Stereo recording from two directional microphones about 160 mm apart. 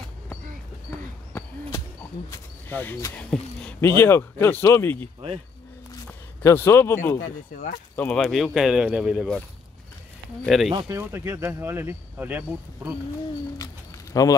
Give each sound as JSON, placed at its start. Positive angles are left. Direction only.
{"t": 2.3, "sound": "speech", "side_deg": 10}
{"t": 8.2, "sound": "speech", "side_deg": 0}
{"t": 10.4, "sound": "speech", "side_deg": 0}
{"t": 10.9, "sound": "speech", "side_deg": -15}
{"t": 14.1, "sound": "speech", "side_deg": 20}